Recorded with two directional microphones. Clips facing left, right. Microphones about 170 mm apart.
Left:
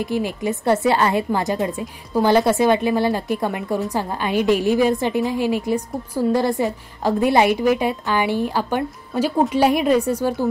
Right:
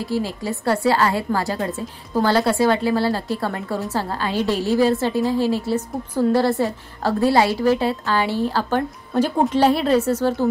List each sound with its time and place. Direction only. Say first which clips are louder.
0.0 s a woman's voice: left 2 dB; 20° left (ahead or behind)